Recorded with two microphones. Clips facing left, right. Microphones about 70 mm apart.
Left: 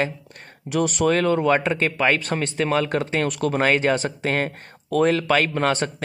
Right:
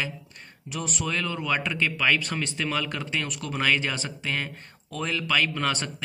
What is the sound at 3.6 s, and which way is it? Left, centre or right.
Speech, left.